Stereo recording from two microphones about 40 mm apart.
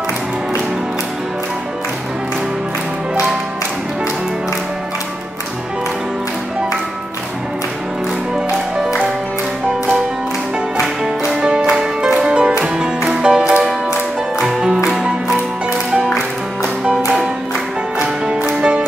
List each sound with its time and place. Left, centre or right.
12.3 s music: right
18.2 s music: right